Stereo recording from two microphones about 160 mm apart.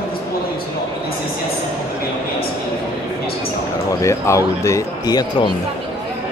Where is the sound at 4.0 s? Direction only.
20° left (ahead or behind).